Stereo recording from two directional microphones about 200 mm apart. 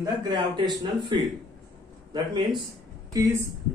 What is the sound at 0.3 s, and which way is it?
Speech, 20° right (ahead or behind).